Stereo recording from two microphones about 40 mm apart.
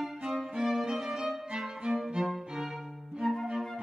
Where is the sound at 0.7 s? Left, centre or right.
Centre.